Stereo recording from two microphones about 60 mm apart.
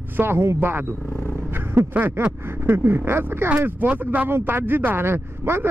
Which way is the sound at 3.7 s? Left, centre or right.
Right.